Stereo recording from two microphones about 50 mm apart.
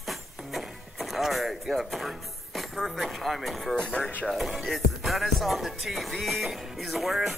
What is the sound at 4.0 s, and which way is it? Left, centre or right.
Speech, left.